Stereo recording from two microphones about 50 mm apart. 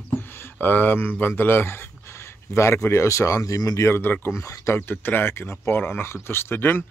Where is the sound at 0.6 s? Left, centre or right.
Left.